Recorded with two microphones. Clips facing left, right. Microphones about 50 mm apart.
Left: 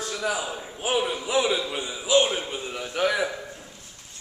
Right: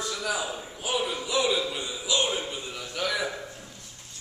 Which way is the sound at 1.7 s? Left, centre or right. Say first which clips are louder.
Left 6 dB; centre.